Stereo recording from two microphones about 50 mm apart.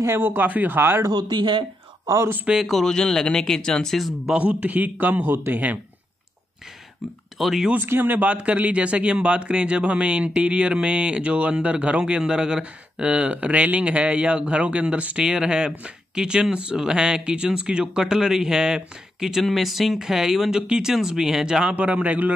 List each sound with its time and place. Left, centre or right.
0.2 s speech: right
2.4 s speech: centre
2.7 s speech: centre
4.3 s speech: right
7.3 s speech: centre
7.7 s speech: right
8.2 s speech: right
21.7 s speech: right